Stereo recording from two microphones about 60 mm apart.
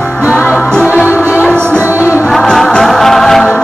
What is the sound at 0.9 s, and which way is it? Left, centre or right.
Music, right.